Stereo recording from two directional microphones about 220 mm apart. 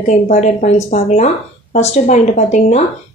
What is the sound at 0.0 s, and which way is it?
Speech, 35° left (ahead or behind).